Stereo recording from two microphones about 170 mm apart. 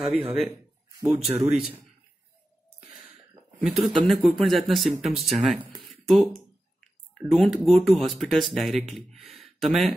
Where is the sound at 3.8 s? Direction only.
30° right (ahead or behind).